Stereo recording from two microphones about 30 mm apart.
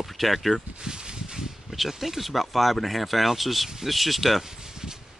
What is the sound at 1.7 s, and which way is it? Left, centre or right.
Speech, centre.